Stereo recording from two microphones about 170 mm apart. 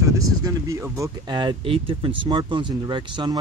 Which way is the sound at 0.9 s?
20° right (ahead or behind).